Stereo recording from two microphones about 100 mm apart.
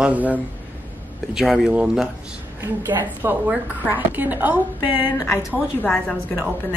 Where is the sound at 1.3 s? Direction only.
5° right (ahead or behind).